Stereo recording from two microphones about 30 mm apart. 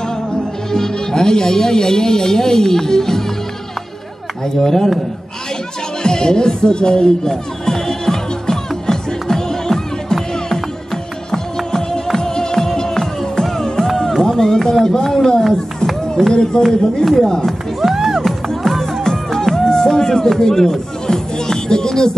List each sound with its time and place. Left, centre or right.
0.7 s speech: centre
4.6 s speech: centre
6.0 s music: left
14.4 s speech: left
17.0 s speech: centre
17.5 s music: centre
17.9 s music: centre
18.2 s music: centre
18.8 s music: centre